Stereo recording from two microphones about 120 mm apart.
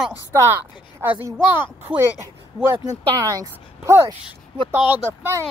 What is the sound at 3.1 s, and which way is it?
Speech, 30° right (ahead or behind).